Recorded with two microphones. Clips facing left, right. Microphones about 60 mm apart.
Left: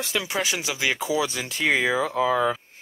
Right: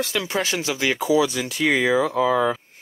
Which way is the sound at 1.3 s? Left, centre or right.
Left.